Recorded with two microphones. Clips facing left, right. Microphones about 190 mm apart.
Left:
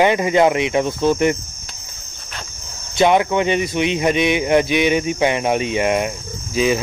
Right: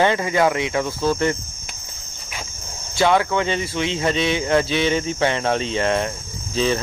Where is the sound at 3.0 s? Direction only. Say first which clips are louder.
Left 3 dB; 20° left (ahead or behind).